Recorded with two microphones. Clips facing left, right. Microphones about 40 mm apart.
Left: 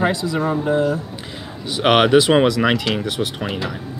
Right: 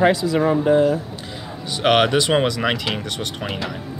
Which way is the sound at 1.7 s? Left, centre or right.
Centre.